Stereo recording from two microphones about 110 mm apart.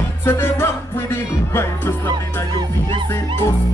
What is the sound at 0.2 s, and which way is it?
Music, 20° left (ahead or behind).